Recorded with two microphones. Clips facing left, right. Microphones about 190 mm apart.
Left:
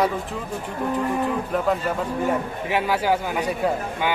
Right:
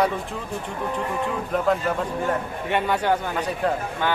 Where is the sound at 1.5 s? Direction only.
Centre (ahead or behind).